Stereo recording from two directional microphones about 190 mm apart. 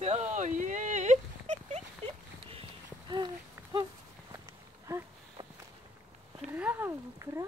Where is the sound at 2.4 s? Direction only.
30° right (ahead or behind).